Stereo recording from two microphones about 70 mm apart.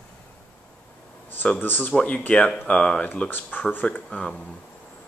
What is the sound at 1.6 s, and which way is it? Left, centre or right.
Speech, left.